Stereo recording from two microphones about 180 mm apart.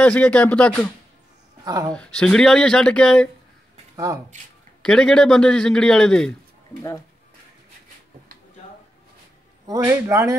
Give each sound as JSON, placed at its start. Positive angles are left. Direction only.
{"t": 0.0, "sound": "speech", "side_deg": 5}
{"t": 1.6, "sound": "speech", "side_deg": -20}
{"t": 1.9, "sound": "a man's voice", "side_deg": 5}
{"t": 3.9, "sound": "speech", "side_deg": -20}
{"t": 4.8, "sound": "a man's voice", "side_deg": 5}
{"t": 9.7, "sound": "a man's voice", "side_deg": -15}